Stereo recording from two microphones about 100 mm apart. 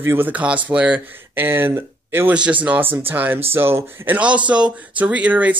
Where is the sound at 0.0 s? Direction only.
20° right (ahead or behind).